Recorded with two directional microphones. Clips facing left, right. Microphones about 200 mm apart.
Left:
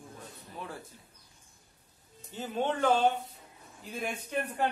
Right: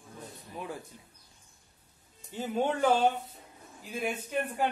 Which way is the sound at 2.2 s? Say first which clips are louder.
Right 2 dB; 10° right (ahead or behind).